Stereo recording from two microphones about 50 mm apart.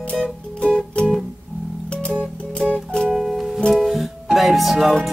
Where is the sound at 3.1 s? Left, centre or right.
Centre.